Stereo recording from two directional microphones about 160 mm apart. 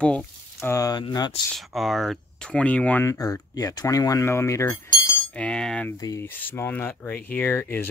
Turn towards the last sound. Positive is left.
turn(degrees=15)  # may be behind; listen again after turning